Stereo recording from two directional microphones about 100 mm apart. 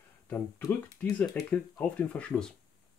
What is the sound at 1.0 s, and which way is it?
Speech, 15° left (ahead or behind).